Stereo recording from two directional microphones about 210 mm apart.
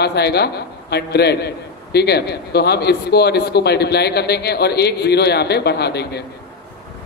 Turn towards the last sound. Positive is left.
turn(degrees=50)  # may be behind; listen again after turning